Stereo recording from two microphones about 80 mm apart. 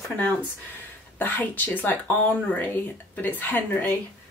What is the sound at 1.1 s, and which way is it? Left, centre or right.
Speech, left.